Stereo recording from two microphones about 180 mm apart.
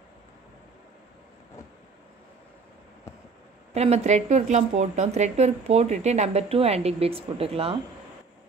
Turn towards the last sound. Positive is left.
turn(degrees=-35)  # may be behind; listen again after turning